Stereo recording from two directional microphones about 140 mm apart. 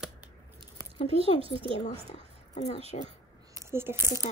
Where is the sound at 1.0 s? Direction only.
40° right (ahead or behind).